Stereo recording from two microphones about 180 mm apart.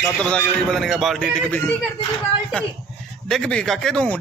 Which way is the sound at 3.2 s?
5° left (ahead or behind).